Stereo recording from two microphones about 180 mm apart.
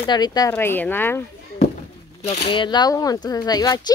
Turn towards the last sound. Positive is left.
turn(degrees=20)  # may be behind; listen again after turning